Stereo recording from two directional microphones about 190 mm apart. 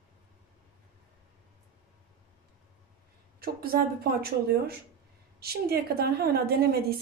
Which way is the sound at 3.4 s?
50° right (ahead or behind).